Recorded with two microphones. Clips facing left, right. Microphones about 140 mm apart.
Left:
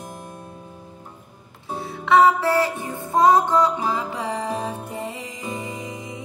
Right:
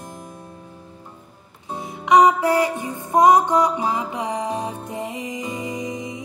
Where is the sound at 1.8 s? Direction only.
15° right (ahead or behind).